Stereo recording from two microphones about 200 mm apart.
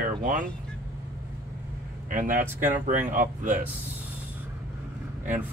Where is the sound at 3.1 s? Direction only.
40° right (ahead or behind).